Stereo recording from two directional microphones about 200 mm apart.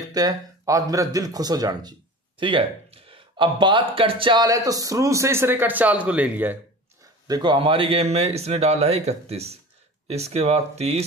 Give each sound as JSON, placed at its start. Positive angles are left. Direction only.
{"t": 0.1, "sound": "speech", "side_deg": -20}
{"t": 7.2, "sound": "speech", "side_deg": -20}